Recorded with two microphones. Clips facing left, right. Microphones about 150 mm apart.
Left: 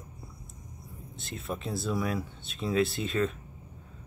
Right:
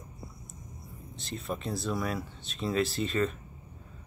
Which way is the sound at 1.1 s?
Centre (ahead or behind).